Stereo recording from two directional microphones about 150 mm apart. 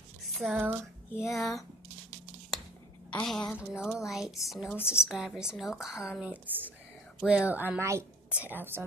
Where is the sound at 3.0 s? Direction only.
5° left (ahead or behind).